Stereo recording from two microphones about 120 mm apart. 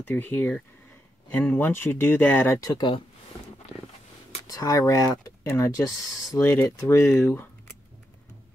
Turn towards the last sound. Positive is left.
turn(degrees=25)  # may be behind; listen again after turning